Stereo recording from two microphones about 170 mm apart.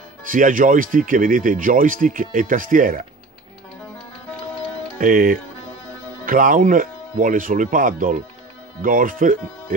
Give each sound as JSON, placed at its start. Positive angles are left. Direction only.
{"t": 0.3, "sound": "speech", "side_deg": -50}
{"t": 4.9, "sound": "music", "side_deg": -55}
{"t": 6.2, "sound": "speech", "side_deg": -55}